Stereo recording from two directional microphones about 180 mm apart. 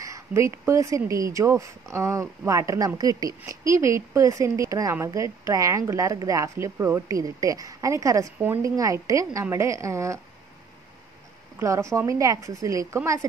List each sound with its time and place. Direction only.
0.0 s speech: 15° right (ahead or behind)
11.6 s speech: 15° right (ahead or behind)